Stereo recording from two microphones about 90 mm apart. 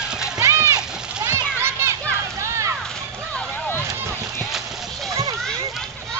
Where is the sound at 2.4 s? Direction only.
35° right (ahead or behind).